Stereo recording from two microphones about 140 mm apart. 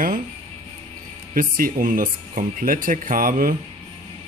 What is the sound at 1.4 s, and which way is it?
Speech, 85° right.